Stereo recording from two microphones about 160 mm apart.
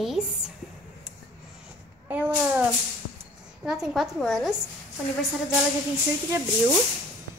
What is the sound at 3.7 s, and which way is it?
Speech, centre (ahead or behind).